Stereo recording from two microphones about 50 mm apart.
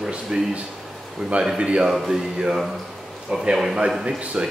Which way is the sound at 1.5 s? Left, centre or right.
Right.